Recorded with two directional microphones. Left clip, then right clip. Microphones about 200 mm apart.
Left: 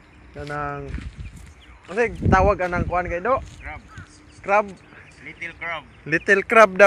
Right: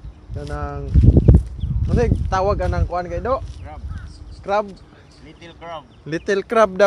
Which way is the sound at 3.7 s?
5° right (ahead or behind).